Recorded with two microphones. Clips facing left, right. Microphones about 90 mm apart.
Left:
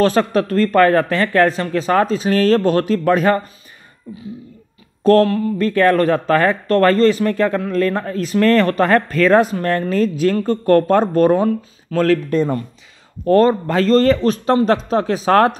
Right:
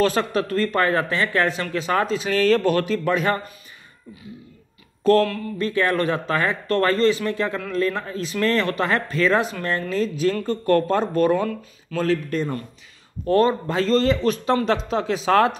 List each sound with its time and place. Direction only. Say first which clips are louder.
0.0 s speech: left 5 dB; 40° left (ahead or behind)
5.0 s speech: left 5 dB; 35° left (ahead or behind)
5.6 s speech: left 6 dB; 50° left (ahead or behind)
10.3 s speech: left 6 dB; 35° left (ahead or behind)
13.3 s speech: left 5 dB; 40° left (ahead or behind)
13.7 s speech: left 6 dB; 50° left (ahead or behind)